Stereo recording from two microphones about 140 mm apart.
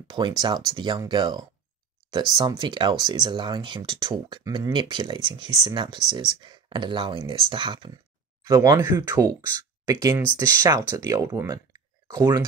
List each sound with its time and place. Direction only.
0.4 s speech: 30° right (ahead or behind)
8.5 s speech: 25° right (ahead or behind)